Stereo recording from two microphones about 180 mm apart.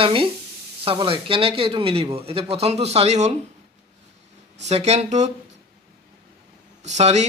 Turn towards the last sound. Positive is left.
turn(degrees=-40)  # may be behind; listen again after turning